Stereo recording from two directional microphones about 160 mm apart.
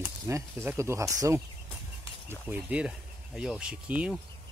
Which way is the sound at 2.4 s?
10° right (ahead or behind).